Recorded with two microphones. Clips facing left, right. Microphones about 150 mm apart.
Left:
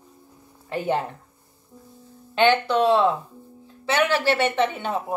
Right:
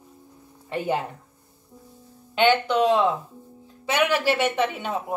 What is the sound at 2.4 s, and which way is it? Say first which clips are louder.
Speech: left 1 dB; 10° right (ahead or behind).